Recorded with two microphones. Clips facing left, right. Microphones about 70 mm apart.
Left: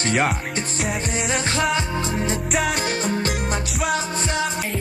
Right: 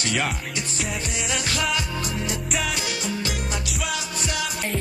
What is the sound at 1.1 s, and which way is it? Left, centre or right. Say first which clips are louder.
Music: left 4 dB; left.